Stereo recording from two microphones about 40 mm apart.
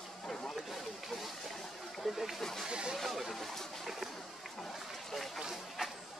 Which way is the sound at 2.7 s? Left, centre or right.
Right.